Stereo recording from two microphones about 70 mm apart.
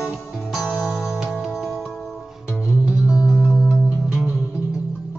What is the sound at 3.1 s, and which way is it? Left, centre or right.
Music, centre.